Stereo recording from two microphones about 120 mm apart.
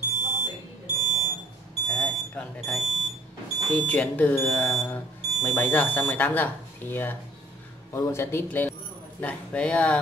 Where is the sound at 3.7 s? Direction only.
10° left (ahead or behind).